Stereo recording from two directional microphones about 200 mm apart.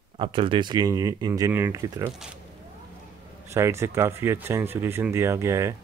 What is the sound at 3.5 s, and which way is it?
Speech, 15° right (ahead or behind).